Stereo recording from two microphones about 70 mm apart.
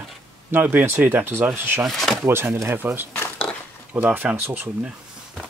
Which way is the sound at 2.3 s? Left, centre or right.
Right.